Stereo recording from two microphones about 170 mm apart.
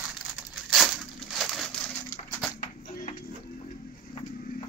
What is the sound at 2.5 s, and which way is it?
Music, 50° left (ahead or behind).